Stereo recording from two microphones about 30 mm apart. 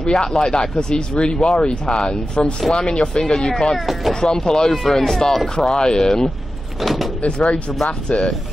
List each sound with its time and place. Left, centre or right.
0.0 s speech: left
3.7 s speech: centre
4.1 s speech: left
5.6 s speech: left
6.8 s vehicle: centre
7.2 s speech: left